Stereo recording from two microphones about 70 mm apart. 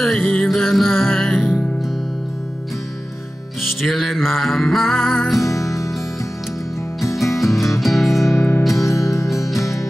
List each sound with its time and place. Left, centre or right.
0.0 s music: centre
3.8 s music: centre
5.4 s music: left
7.3 s music: centre
8.3 s music: left